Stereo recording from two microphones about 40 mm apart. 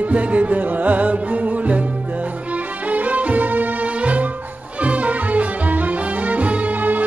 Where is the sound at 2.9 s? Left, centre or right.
Right.